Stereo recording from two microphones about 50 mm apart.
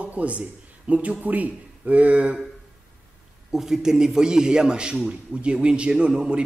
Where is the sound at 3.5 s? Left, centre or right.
Centre.